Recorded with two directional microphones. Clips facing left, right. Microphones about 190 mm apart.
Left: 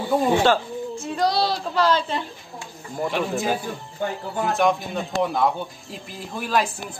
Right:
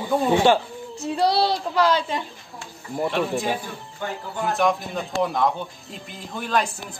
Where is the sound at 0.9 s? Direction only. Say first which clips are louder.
Right 2 dB; 30° right (ahead or behind).